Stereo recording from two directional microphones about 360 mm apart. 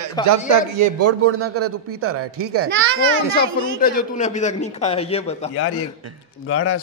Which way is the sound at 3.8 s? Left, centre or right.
Left.